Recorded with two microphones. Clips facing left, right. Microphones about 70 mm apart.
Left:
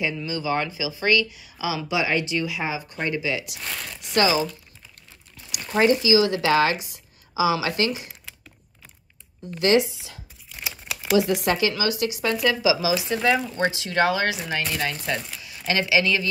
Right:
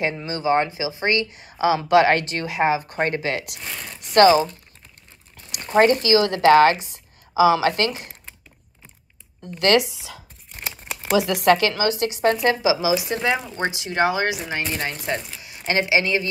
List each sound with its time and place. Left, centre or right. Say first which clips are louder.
0.0 s a woman's voice: right 3 dB; right
3.5 s speech: left 1 dB; centre
3.9 s speech: right 8 dB; right
5.8 s a woman's voice: right 2 dB; right
9.6 s a woman's voice: right 1 dB; right
10.6 s crumpling: right 1 dB; centre
11.2 s a woman's voice: right 5 dB; right
13.2 s speech: left 1 dB; centre